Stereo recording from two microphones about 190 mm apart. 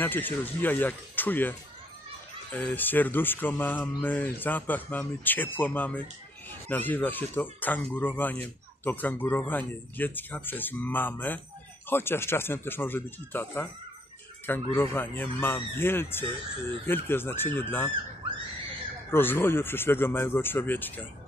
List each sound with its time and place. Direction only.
0.0 s speech: 10° left (ahead or behind)
18.2 s screaming: 30° right (ahead or behind)
19.0 s speech: 10° left (ahead or behind)